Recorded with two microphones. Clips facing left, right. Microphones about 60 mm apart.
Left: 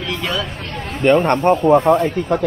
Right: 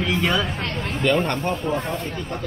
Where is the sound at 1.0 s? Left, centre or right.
Left.